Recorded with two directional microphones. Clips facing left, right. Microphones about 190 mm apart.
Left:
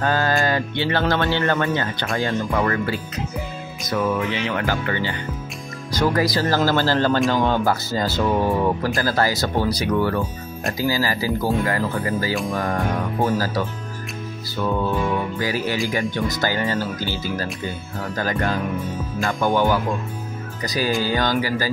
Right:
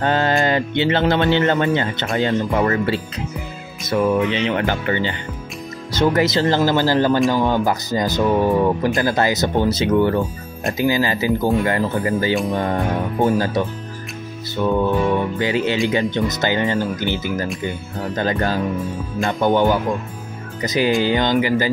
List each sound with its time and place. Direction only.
0.0 s speech: 25° right (ahead or behind)
14.5 s music: 20° right (ahead or behind)
15.3 s speech: 25° right (ahead or behind)